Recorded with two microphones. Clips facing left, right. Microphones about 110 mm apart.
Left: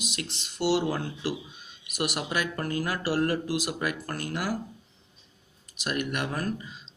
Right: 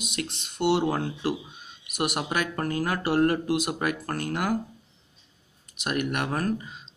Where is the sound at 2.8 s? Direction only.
50° right (ahead or behind).